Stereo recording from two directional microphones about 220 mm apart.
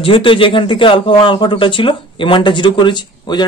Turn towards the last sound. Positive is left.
turn(degrees=20)  # may be behind; listen again after turning